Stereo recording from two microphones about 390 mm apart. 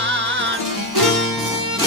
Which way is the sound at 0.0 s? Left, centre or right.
Right.